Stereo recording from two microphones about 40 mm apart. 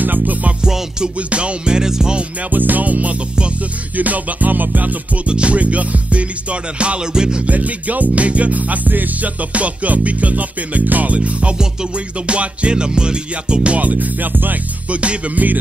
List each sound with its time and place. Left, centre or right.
0.0 s music: right
0.6 s music: centre
2.5 s music: right
5.3 s music: right
7.4 s music: right
9.5 s music: right
13.7 s music: right
14.9 s music: right